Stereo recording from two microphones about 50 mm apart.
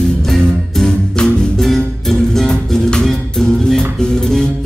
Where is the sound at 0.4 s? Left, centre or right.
Centre.